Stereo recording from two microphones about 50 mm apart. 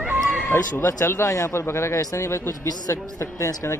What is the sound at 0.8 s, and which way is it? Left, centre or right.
Speech, left.